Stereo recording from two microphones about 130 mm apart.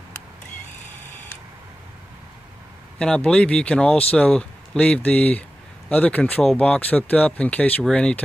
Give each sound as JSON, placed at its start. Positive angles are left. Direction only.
{"t": 3.0, "sound": "speech", "side_deg": 5}